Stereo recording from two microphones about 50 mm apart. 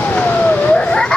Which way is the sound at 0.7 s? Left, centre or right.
Left.